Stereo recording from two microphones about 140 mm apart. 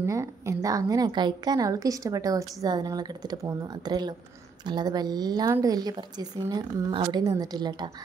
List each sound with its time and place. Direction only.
0.0 s a woman's voice: 20° right (ahead or behind)